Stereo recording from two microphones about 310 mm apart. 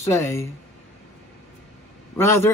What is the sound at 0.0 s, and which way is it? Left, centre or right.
Speech, centre.